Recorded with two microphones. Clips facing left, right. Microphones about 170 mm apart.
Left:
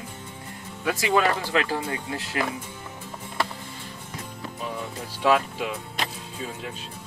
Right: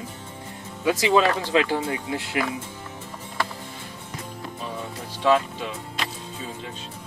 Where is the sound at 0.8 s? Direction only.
20° right (ahead or behind).